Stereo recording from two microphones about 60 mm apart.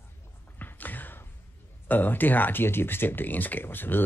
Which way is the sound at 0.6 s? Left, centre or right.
Left.